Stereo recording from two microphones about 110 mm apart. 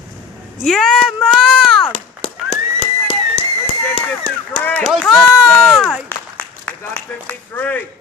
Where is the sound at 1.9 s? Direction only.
70° left (ahead or behind).